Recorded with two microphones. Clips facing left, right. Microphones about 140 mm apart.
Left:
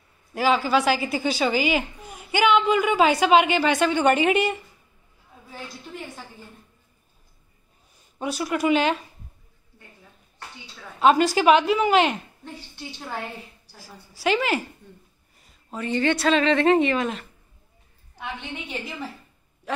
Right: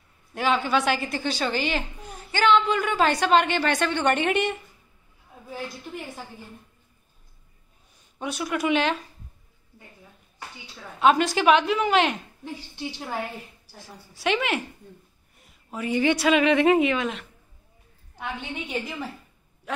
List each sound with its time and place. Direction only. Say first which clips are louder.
0.3 s a woman's voice: left 3 dB; 5° left (ahead or behind)
8.2 s a woman's voice: left 2 dB; centre (ahead or behind)
11.0 s a woman's voice: left 2 dB; centre (ahead or behind)
12.5 s a woman's voice: right 5 dB; 15° right (ahead or behind)
13.7 s a woman's voice: right 1 dB; 5° left (ahead or behind)